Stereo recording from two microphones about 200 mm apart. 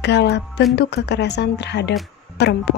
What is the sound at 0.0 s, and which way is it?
Speech, 60° left (ahead or behind).